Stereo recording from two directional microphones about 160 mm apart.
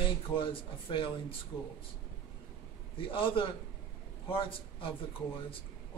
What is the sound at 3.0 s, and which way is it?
Speech, 35° left (ahead or behind).